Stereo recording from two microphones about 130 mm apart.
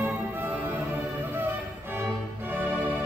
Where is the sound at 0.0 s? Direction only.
15° right (ahead or behind).